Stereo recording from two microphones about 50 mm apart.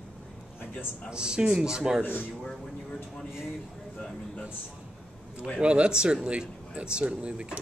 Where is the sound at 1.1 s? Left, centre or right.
Centre.